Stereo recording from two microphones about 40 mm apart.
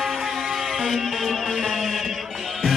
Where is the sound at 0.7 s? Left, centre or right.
Centre.